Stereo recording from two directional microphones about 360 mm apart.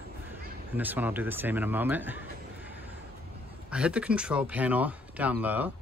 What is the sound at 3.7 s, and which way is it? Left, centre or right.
Speech, centre.